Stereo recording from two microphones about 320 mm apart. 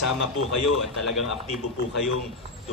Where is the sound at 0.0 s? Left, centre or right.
Left.